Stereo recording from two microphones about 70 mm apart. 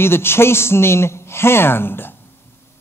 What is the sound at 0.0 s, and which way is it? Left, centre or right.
A man's voice, left.